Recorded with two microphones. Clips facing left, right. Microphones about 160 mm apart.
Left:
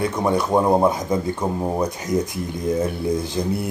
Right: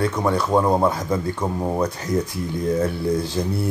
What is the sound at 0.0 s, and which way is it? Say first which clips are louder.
Speech: even; 15° left (ahead or behind).